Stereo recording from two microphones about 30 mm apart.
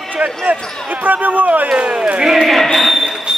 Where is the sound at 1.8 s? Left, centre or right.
Right.